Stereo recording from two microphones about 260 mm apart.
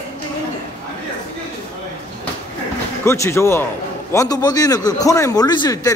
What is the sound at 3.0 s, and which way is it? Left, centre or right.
A man's voice, centre.